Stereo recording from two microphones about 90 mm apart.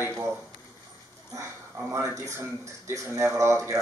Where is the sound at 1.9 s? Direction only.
35° right (ahead or behind).